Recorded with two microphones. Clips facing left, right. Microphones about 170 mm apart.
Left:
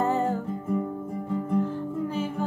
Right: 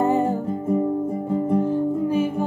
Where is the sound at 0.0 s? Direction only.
15° right (ahead or behind).